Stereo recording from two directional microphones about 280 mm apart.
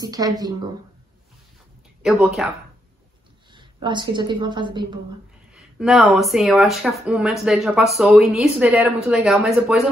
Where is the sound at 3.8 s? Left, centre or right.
Centre.